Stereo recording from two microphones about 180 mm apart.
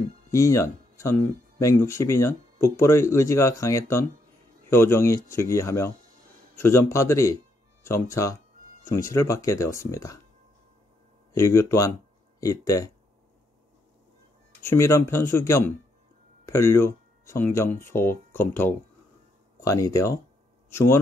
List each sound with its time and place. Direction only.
0.3 s speech: 15° left (ahead or behind)
11.3 s speech: 15° left (ahead or behind)
14.6 s speech: 15° left (ahead or behind)